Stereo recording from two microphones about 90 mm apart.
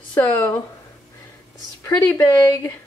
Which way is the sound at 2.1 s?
35° left (ahead or behind).